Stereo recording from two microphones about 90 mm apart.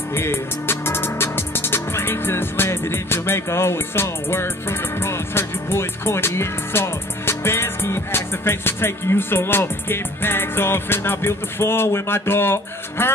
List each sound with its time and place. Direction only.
0.1 s music: 25° left (ahead or behind)